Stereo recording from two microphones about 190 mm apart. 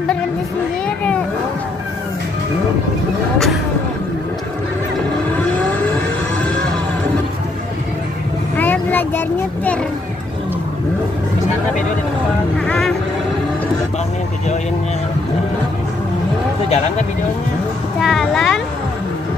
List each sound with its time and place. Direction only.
0.8 s children playing: 5° left (ahead or behind)
5.1 s vehicle: 10° left (ahead or behind)
8.5 s vehicle: 10° left (ahead or behind)
12.6 s speech: 5° left (ahead or behind)
16.6 s speech: 35° left (ahead or behind)
18.0 s speech: centre (ahead or behind)